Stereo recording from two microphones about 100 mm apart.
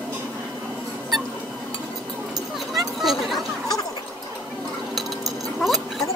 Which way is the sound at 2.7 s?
Centre (ahead or behind).